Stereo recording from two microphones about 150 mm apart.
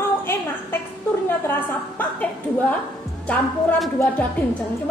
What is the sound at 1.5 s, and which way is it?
A woman's voice, 15° left (ahead or behind).